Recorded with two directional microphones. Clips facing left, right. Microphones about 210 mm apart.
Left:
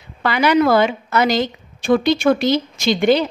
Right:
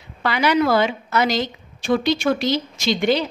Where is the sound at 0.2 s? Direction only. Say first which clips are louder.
Left 3 dB; 50° left (ahead or behind).